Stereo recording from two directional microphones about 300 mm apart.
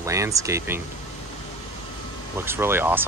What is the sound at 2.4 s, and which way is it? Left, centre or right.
Speech, centre.